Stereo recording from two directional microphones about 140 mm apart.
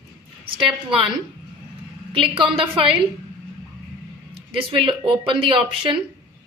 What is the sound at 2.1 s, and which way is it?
Speech, 40° right (ahead or behind).